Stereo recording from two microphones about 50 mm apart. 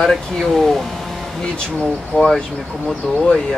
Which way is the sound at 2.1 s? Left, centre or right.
Left.